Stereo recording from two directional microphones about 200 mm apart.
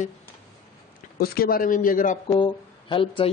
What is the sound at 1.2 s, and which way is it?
A man's voice, 50° left (ahead or behind).